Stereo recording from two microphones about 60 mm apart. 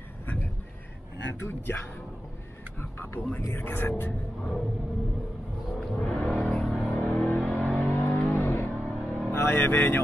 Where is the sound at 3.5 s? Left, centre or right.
Left.